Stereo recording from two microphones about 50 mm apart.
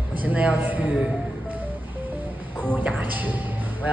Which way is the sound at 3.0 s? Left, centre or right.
Right.